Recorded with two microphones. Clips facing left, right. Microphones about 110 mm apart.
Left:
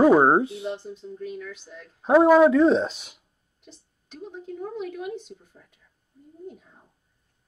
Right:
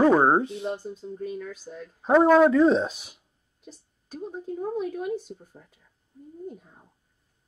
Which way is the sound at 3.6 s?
40° right (ahead or behind).